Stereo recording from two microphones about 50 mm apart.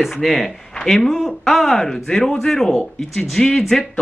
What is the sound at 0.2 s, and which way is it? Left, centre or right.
Speech, centre.